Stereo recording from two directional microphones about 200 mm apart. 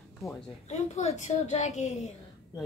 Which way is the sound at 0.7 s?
35° left (ahead or behind).